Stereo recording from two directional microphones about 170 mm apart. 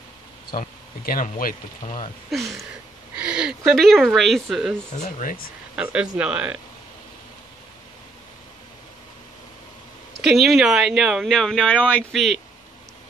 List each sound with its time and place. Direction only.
0.6 s speech: 55° left (ahead or behind)
2.3 s speech: centre (ahead or behind)
5.0 s speech: 55° left (ahead or behind)
5.8 s speech: 5° right (ahead or behind)
10.2 s speech: centre (ahead or behind)